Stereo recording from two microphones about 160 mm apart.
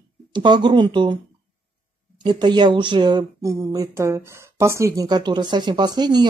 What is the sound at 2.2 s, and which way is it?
Speech, 25° right (ahead or behind).